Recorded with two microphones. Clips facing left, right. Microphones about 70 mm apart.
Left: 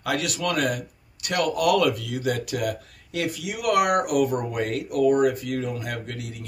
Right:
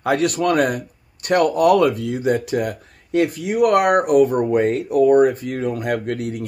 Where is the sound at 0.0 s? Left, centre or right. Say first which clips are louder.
Right 8 dB; right.